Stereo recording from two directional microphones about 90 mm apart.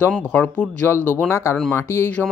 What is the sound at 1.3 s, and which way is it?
Speech, 30° left (ahead or behind).